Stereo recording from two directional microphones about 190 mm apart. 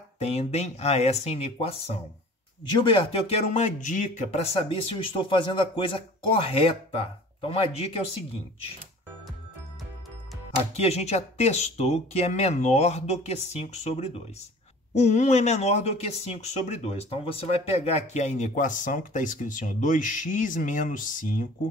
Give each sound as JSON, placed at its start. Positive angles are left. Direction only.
{"t": 0.2, "sound": "speech", "side_deg": 35}
{"t": 2.8, "sound": "speech", "side_deg": 25}
{"t": 10.8, "sound": "speech", "side_deg": 35}